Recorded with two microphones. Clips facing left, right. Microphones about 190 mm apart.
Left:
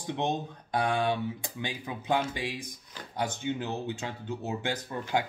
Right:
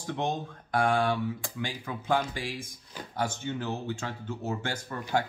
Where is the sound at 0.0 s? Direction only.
20° left (ahead or behind).